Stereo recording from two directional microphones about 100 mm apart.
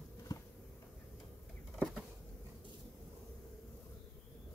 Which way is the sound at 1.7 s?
Centre (ahead or behind).